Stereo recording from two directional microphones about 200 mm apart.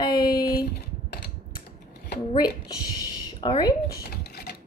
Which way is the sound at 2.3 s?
20° left (ahead or behind).